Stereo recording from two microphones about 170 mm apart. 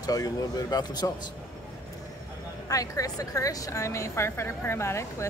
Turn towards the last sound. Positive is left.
turn(degrees=15)  # may be behind; listen again after turning